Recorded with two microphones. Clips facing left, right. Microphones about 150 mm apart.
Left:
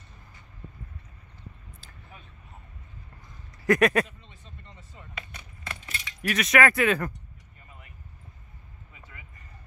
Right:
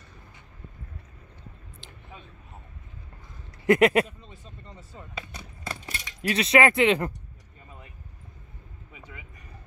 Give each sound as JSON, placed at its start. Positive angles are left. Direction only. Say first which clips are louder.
{"t": 3.6, "sound": "speech", "louder": "right 2 dB", "side_deg": -25}
{"t": 4.7, "sound": "keys jangling", "louder": "right 4 dB", "side_deg": -35}
{"t": 6.2, "sound": "speech", "louder": "right 2 dB", "side_deg": -30}
{"t": 8.9, "sound": "a sound", "louder": "right 6 dB", "side_deg": -20}